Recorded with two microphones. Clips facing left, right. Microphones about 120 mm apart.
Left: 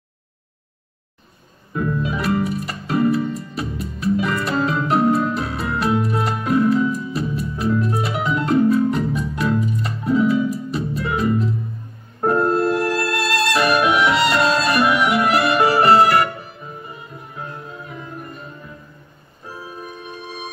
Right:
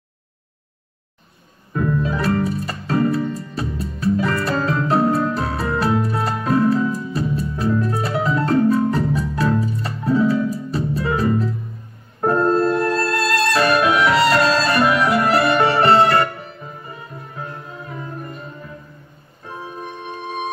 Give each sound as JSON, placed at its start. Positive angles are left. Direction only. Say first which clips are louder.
{"t": 1.8, "sound": "music", "louder": "right 2 dB", "side_deg": -30}